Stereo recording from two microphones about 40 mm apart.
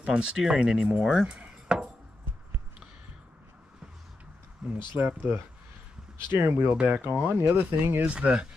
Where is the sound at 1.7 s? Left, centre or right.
Right.